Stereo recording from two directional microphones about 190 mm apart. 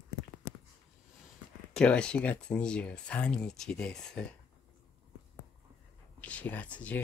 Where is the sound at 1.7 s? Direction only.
5° left (ahead or behind).